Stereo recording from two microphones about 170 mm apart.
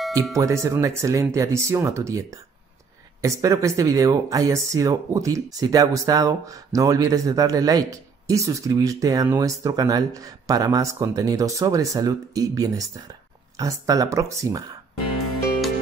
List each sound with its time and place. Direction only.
0.4 s speech: 20° right (ahead or behind)